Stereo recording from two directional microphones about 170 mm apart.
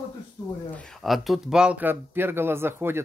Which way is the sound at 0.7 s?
5° left (ahead or behind).